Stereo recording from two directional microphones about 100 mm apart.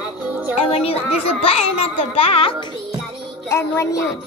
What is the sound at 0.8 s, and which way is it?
A child's voice, 85° left.